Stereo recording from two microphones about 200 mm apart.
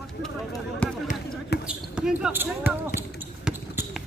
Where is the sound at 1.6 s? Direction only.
5° right (ahead or behind).